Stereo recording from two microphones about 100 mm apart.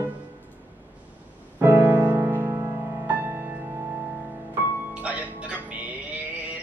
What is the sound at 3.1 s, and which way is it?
Music, 20° right (ahead or behind).